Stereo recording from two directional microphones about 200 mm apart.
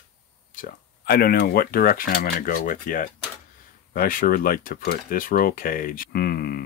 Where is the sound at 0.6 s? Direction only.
50° left (ahead or behind).